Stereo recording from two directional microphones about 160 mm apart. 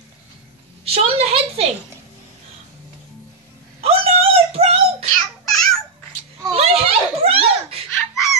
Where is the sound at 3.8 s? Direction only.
40° right (ahead or behind).